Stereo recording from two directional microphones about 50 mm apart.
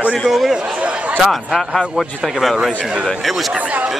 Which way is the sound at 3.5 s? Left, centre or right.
Right.